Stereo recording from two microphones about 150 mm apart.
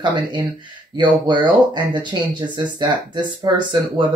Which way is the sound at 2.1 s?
30° right (ahead or behind).